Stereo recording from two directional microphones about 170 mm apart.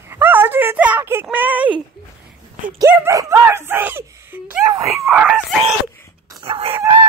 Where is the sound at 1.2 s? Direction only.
10° right (ahead or behind).